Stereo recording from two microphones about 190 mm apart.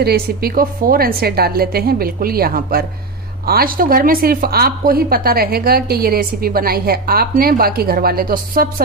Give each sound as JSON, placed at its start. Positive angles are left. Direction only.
{"t": 0.0, "sound": "a woman's voice", "side_deg": -55}